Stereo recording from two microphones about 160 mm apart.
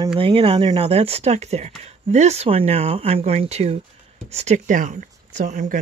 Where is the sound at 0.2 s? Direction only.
35° right (ahead or behind).